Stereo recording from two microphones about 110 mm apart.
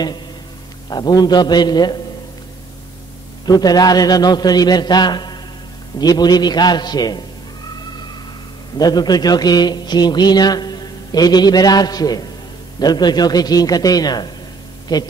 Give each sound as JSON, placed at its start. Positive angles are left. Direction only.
{"t": 0.8, "sound": "a man's voice", "side_deg": 40}
{"t": 3.4, "sound": "a man's voice", "side_deg": 35}
{"t": 8.7, "sound": "a man's voice", "side_deg": 40}